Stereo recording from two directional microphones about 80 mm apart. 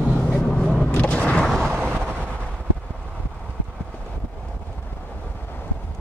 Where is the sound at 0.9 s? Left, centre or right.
Centre.